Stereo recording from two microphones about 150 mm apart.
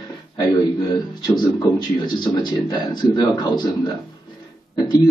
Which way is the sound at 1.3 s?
30° left (ahead or behind).